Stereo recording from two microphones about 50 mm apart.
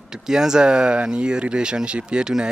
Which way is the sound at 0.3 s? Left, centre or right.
Centre.